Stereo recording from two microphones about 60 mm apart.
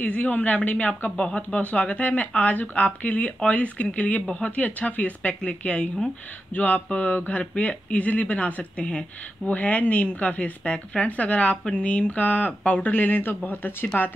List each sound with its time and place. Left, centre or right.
0.0 s speech: left